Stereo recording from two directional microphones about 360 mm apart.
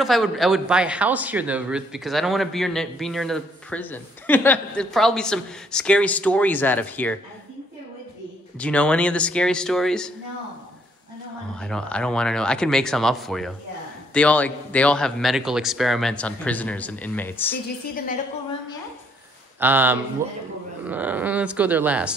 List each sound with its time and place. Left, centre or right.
0.0 s speech: centre
8.5 s speech: centre
11.6 s speech: centre
17.9 s a woman's voice: left
19.6 s speech: centre